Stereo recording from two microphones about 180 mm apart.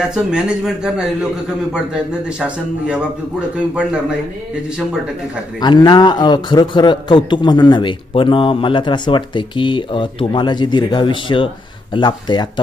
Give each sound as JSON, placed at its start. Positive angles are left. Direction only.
{"t": 0.1, "sound": "speech", "side_deg": -5}
{"t": 5.6, "sound": "a man's voice", "side_deg": 25}